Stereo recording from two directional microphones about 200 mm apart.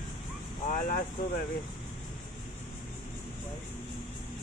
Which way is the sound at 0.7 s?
40° left (ahead or behind).